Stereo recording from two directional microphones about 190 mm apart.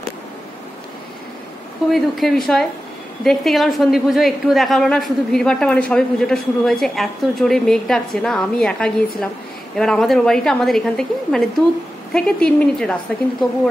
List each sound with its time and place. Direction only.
1.9 s a woman's voice: centre (ahead or behind)